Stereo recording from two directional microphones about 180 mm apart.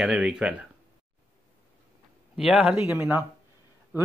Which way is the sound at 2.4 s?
5° right (ahead or behind).